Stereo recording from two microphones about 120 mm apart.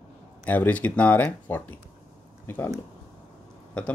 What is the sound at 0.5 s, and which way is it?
Speech, 10° left (ahead or behind).